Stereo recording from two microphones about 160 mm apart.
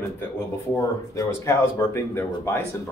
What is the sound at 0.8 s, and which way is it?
Speech, 20° left (ahead or behind).